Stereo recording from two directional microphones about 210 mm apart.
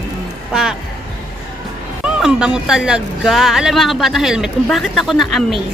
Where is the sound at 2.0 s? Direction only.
5° right (ahead or behind).